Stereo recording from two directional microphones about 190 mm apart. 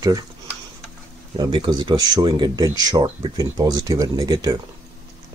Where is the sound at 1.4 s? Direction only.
20° right (ahead or behind).